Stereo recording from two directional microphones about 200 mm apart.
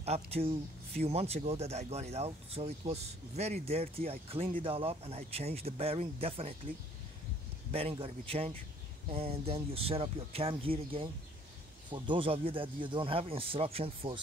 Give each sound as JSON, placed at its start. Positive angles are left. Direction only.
{"t": 0.0, "sound": "speech", "side_deg": -30}
{"t": 7.7, "sound": "speech", "side_deg": -30}